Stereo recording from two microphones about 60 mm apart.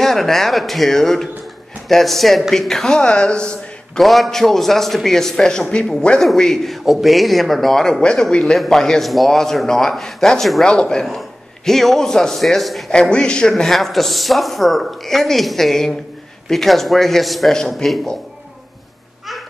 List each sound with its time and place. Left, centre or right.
0.0 s a man's voice: centre
4.0 s a man's voice: centre
12.9 s a man's voice: centre